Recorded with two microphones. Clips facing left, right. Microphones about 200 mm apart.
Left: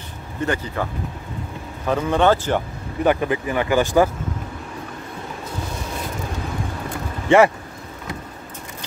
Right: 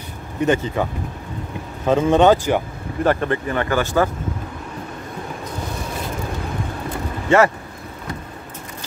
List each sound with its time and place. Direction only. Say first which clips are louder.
0.4 s speech: right 5 dB; 15° right (ahead or behind)
1.9 s speech: right 4 dB; 20° right (ahead or behind)
3.0 s speech: even; 5° left (ahead or behind)
7.2 s speech: left 1 dB; 15° left (ahead or behind)